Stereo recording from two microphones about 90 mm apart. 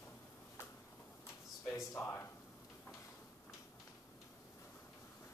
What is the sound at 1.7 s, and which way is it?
Speech, 30° left (ahead or behind).